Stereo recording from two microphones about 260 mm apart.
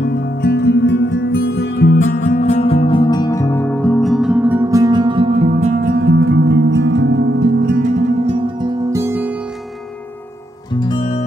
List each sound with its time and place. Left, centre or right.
0.4 s music: left
2.2 s music: left; by 5.9 s right
5.9 s music: right
8.5 s music: centre
10.8 s music: centre